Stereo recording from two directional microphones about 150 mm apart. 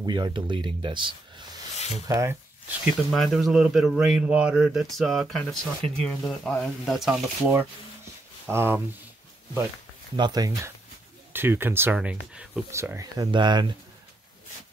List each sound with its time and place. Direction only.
0.0 s speech: 30° right (ahead or behind)
1.8 s a sound: 45° left (ahead or behind)
2.0 s speech: 20° right (ahead or behind)
3.1 s speech: centre (ahead or behind)
8.5 s speech: 15° right (ahead or behind)
10.1 s speech: 25° right (ahead or behind)
11.3 s speech: 15° right (ahead or behind)
12.7 s speech: 20° right (ahead or behind)